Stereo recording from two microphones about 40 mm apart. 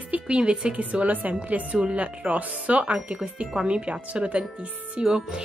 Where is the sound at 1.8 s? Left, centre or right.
Right.